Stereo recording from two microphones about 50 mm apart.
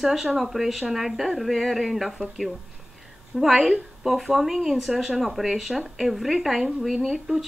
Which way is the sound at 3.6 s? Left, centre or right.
Centre.